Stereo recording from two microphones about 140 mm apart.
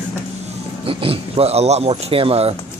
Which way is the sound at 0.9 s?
40° right (ahead or behind).